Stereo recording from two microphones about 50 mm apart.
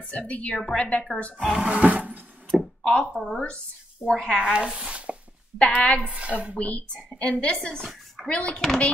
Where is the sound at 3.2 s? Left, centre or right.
Centre.